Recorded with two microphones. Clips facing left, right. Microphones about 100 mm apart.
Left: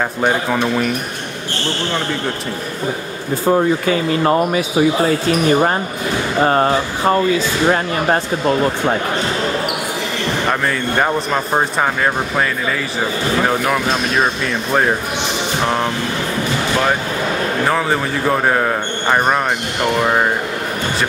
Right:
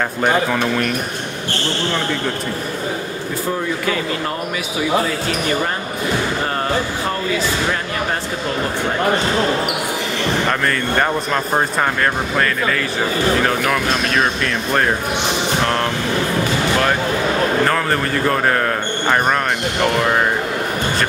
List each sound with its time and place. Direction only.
0.2 s a man's voice: 10° left (ahead or behind)
4.3 s speech: 40° left (ahead or behind)
11.5 s a man's voice: 10° left (ahead or behind)
17.6 s a man's voice: 5° left (ahead or behind)